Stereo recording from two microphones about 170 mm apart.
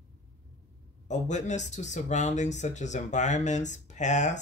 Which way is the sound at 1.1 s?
45° left (ahead or behind).